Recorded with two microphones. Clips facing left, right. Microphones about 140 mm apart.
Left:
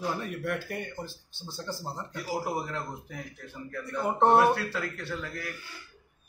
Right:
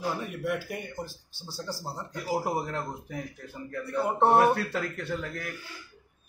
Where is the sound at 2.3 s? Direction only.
45° right (ahead or behind).